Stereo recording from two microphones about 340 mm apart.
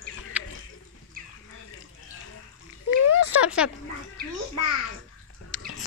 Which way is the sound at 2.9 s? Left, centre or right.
Left.